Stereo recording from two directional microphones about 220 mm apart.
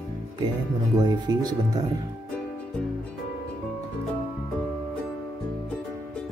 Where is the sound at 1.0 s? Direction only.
20° right (ahead or behind).